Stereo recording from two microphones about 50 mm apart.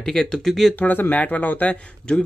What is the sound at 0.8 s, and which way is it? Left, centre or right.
Speech, left.